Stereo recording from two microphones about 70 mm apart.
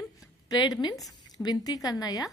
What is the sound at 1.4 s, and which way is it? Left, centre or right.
Speech, left.